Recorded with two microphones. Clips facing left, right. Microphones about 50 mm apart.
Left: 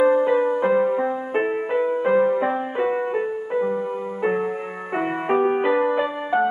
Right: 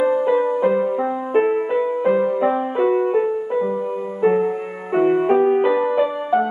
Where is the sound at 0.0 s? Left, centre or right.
Centre.